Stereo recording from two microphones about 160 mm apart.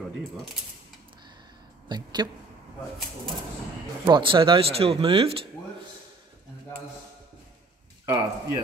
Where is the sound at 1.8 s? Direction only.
25° right (ahead or behind).